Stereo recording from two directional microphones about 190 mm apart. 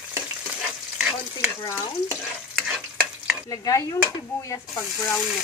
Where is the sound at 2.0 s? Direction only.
10° right (ahead or behind).